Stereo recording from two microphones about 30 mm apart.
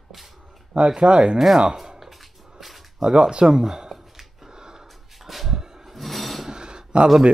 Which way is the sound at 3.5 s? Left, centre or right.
Centre.